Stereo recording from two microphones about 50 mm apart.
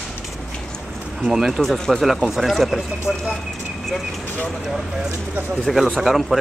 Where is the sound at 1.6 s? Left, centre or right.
Centre.